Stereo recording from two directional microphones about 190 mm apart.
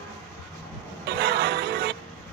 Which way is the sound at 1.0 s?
60° right (ahead or behind).